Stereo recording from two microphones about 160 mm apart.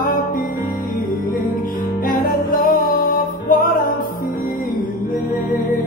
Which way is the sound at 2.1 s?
60° left (ahead or behind).